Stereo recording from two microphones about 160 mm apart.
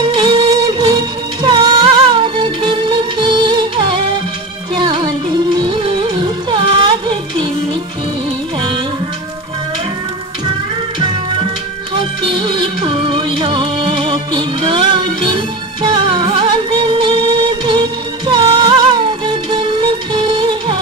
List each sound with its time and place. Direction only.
0.0 s music: 25° right (ahead or behind)
8.5 s music: 30° right (ahead or behind)
11.9 s music: 30° right (ahead or behind)